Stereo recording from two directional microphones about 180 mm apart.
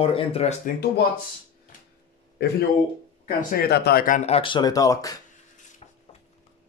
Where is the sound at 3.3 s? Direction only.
50° left (ahead or behind); by 5.2 s 20° left (ahead or behind).